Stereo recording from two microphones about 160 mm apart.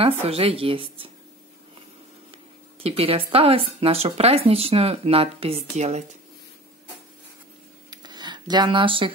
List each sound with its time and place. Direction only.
0.0 s speech: 40° right (ahead or behind)
2.8 s speech: 35° right (ahead or behind)
7.9 s a sound: 25° right (ahead or behind)